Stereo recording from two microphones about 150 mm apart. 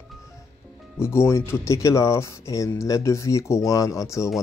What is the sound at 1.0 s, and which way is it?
Speech, 15° left (ahead or behind).